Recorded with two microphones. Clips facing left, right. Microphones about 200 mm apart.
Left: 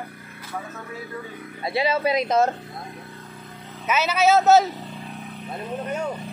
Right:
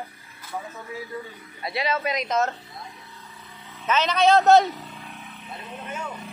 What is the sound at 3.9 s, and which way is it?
Speech, 5° left (ahead or behind).